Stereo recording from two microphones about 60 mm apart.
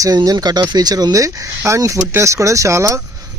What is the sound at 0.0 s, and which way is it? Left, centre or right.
Speech, right.